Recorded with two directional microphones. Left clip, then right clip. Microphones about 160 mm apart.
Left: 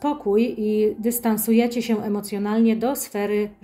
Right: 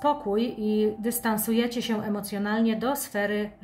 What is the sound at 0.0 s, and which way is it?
Speech, 20° left (ahead or behind).